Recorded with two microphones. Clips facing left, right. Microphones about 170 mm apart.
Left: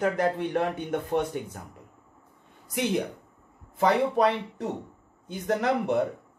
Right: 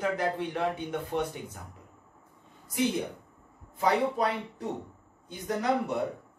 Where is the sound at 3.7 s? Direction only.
75° left (ahead or behind).